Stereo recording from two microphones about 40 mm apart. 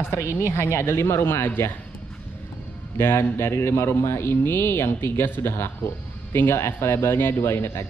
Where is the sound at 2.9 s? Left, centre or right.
Left.